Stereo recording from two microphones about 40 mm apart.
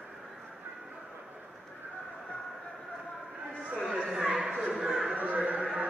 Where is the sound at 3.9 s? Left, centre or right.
Centre.